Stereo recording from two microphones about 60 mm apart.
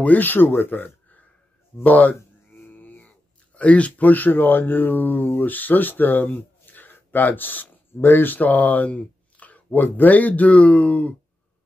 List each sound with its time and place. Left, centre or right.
0.0 s speech: left
2.1 s a sound: left
3.5 s speech: left